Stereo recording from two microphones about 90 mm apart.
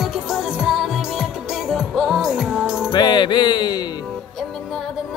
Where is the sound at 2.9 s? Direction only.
55° left (ahead or behind).